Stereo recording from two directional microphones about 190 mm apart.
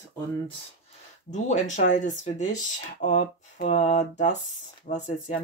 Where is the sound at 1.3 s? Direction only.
40° left (ahead or behind).